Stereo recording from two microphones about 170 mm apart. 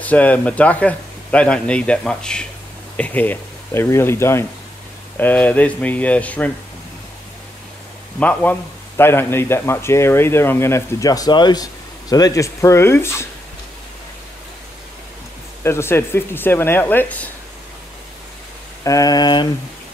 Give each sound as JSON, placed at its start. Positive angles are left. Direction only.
{"t": 0.0, "sound": "a man's voice", "side_deg": 10}
{"t": 8.2, "sound": "a man's voice", "side_deg": 10}
{"t": 15.6, "sound": "a man's voice", "side_deg": 15}
{"t": 18.9, "sound": "a sound", "side_deg": 20}